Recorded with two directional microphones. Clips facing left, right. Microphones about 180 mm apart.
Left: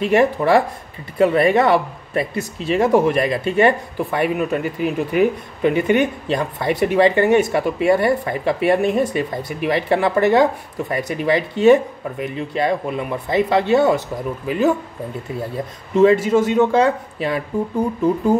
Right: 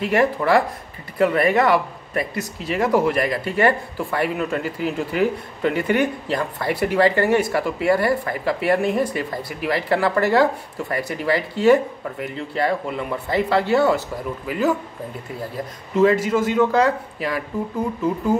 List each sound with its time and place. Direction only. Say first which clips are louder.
0.0 s speech: left 3 dB; 25° left (ahead or behind)